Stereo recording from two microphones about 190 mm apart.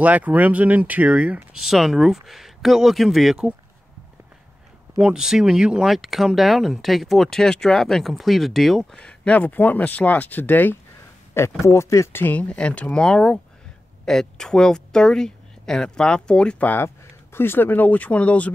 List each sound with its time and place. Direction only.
0.0 s speech: 10° right (ahead or behind)
4.9 s speech: 5° right (ahead or behind)